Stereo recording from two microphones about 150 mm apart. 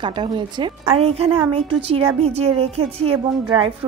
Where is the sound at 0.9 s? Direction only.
40° right (ahead or behind).